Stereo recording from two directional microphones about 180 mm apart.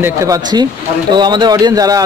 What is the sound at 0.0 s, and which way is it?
Speech, 15° right (ahead or behind).